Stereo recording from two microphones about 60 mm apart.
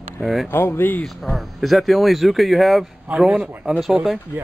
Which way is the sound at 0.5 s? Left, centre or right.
Left.